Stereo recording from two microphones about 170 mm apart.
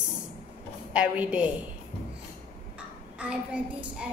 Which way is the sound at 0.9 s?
5° right (ahead or behind).